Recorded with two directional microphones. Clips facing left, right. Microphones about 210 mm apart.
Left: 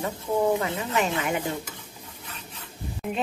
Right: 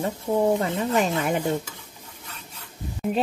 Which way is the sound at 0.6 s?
35° right (ahead or behind).